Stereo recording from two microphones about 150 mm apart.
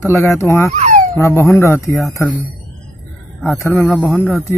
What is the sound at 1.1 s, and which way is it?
Speech, 20° left (ahead or behind).